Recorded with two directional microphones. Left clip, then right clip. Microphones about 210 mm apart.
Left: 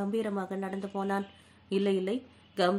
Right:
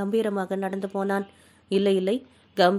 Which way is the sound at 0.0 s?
40° right (ahead or behind).